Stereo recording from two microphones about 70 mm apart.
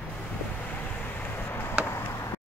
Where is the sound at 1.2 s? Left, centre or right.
Left.